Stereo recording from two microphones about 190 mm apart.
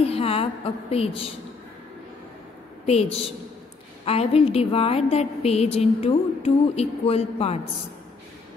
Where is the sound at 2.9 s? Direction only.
35° left (ahead or behind).